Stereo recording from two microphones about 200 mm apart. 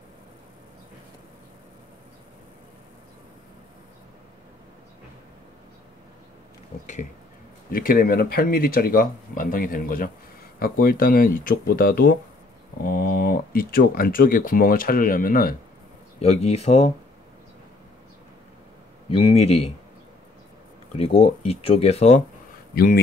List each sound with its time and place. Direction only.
7.7 s speech: 45° left (ahead or behind)
16.2 s speech: 30° left (ahead or behind)
19.0 s speech: 30° left (ahead or behind)
20.9 s speech: 30° left (ahead or behind)